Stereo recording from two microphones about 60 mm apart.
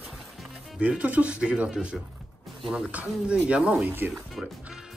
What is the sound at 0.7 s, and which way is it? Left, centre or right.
Speech, right.